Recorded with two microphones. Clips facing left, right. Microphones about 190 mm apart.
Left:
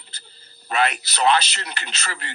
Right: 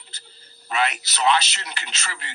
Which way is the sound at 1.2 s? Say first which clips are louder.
Left 2 dB; 40° left (ahead or behind).